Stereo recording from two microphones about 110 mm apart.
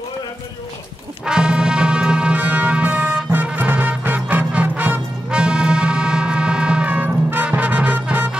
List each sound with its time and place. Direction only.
1.2 s music: 10° right (ahead or behind)